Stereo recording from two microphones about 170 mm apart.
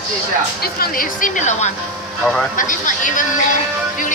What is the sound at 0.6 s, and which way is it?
Speech, 60° left (ahead or behind).